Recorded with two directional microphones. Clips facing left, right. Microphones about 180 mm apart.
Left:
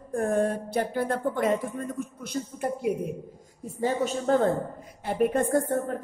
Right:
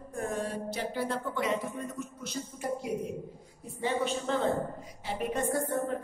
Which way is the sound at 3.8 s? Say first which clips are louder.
Left 4 dB; 40° left (ahead or behind).